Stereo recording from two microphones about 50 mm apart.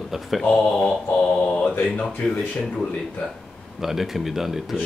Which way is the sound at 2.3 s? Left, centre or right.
Left.